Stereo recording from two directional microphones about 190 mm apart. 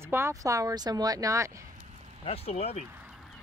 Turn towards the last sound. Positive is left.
turn(degrees=-5)  # may be behind; listen again after turning